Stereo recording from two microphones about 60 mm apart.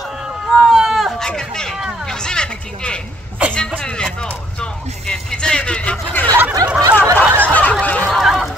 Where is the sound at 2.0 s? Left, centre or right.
Centre.